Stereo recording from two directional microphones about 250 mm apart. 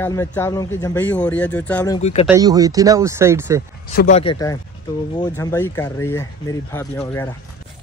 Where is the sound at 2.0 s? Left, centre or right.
Left.